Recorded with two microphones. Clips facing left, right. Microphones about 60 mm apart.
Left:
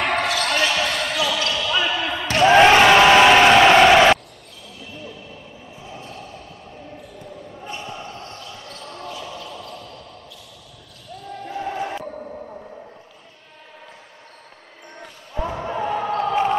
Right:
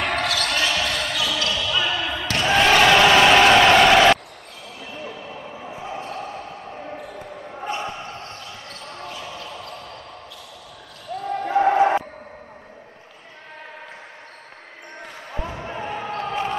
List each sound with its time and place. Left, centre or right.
0.0 s basketball bounce: centre
4.9 s basketball bounce: right
7.9 s basketball bounce: right
9.4 s basketball bounce: right
11.2 s basketball bounce: right
15.6 s basketball bounce: centre